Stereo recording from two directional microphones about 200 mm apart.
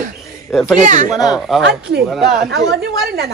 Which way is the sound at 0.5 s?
Centre (ahead or behind).